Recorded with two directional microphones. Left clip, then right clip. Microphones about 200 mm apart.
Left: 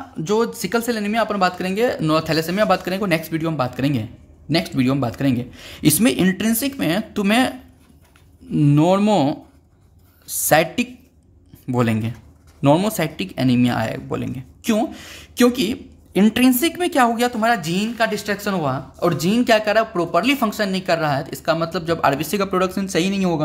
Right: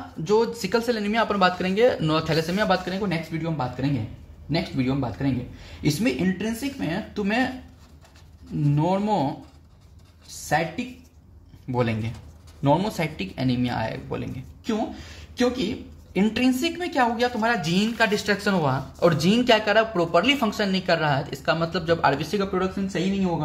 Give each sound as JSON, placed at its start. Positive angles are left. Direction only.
{"t": 0.3, "sound": "a woman's voice", "side_deg": 30}
{"t": 8.7, "sound": "speech", "side_deg": 40}
{"t": 11.6, "sound": "speech", "side_deg": 35}
{"t": 15.3, "sound": "a woman's voice", "side_deg": 45}
{"t": 22.5, "sound": "speech", "side_deg": 45}